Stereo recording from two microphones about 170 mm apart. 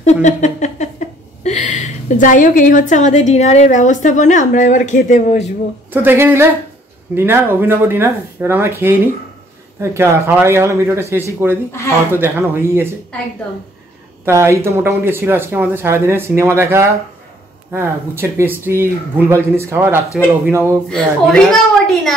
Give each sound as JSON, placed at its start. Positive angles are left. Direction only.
{"t": 0.0, "sound": "a sound", "side_deg": 45}
{"t": 5.9, "sound": "speech", "side_deg": -10}
{"t": 14.2, "sound": "speech", "side_deg": -15}
{"t": 20.9, "sound": "a woman's voice", "side_deg": 5}